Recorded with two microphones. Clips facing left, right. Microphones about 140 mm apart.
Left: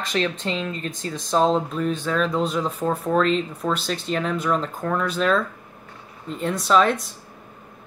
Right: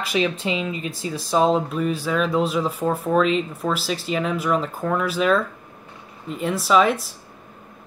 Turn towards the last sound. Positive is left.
turn(degrees=-5)  # may be behind; listen again after turning